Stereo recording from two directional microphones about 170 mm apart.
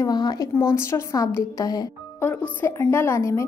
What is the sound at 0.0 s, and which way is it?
A woman's voice, 25° left (ahead or behind).